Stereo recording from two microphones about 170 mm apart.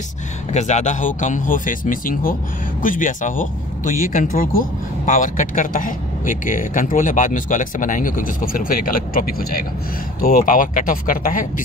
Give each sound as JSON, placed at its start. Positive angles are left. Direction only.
{"t": 0.5, "sound": "speech", "side_deg": 40}